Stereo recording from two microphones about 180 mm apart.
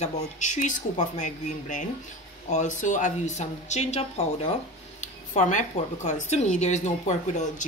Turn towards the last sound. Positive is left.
turn(degrees=40)  # may be behind; listen again after turning